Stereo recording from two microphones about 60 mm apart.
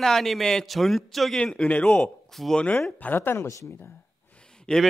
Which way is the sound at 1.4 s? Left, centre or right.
Centre.